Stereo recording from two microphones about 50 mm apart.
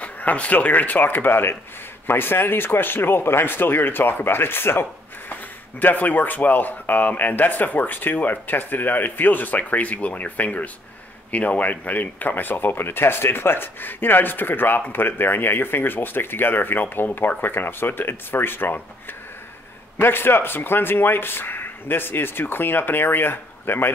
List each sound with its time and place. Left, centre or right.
0.0 s speech: left
5.8 s speech: left
20.0 s speech: left